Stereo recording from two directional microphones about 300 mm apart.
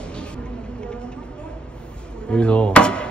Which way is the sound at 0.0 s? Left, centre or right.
Centre.